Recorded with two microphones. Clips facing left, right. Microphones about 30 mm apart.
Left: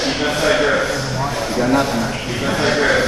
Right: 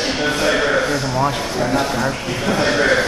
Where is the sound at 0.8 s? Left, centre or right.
Right.